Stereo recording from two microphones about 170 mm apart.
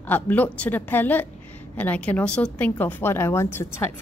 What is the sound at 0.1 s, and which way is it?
A woman's voice, 10° left (ahead or behind).